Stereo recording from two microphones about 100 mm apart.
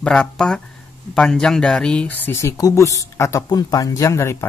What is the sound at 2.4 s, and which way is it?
Speech, 35° left (ahead or behind).